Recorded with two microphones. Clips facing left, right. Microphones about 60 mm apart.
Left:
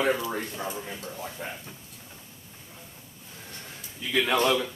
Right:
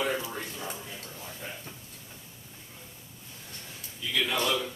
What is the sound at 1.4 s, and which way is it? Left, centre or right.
Speech, left.